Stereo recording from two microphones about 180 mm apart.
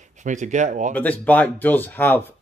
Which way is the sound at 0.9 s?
10° left (ahead or behind).